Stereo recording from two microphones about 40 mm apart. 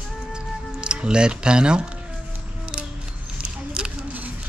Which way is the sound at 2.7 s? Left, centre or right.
Right.